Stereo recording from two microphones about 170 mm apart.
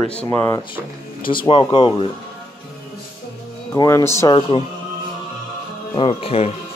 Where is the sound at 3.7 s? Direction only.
20° left (ahead or behind).